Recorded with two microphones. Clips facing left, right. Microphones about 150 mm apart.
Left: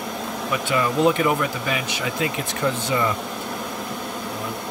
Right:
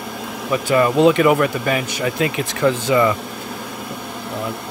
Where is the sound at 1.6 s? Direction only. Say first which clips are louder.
Right 5 dB; 50° right (ahead or behind).